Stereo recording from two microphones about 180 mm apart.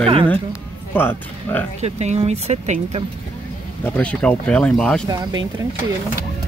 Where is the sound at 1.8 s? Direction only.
35° right (ahead or behind).